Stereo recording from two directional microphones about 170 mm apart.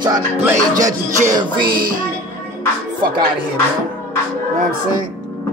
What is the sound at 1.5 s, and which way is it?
Music, 60° right (ahead or behind).